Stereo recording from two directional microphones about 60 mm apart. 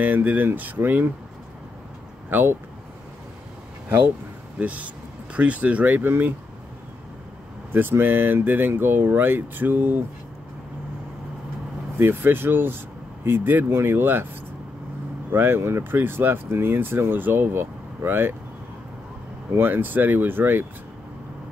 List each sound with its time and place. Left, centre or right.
0.0 s speech: right
2.2 s speech: right
4.6 s speech: right
7.7 s speech: right
12.0 s speech: right
13.7 s speech: right
15.3 s speech: right
15.8 s speech: right
19.5 s speech: right